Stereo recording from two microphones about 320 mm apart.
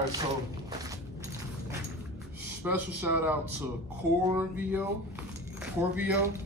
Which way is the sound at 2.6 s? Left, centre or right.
Centre.